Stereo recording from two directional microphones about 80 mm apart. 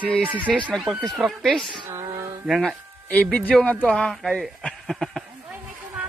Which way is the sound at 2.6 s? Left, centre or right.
Centre.